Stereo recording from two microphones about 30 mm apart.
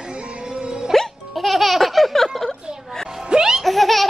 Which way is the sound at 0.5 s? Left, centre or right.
Right.